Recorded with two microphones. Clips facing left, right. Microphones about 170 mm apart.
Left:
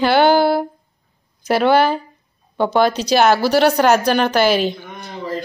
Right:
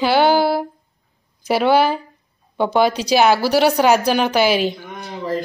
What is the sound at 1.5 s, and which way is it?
A woman's voice, 5° right (ahead or behind).